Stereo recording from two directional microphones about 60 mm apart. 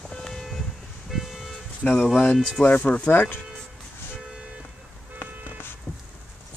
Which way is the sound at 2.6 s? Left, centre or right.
Left.